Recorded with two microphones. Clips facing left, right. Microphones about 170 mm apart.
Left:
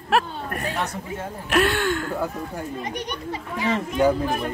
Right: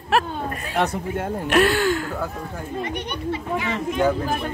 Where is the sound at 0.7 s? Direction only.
60° right (ahead or behind).